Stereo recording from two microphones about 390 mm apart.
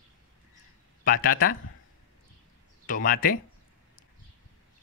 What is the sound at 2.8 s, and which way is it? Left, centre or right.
Speech, left.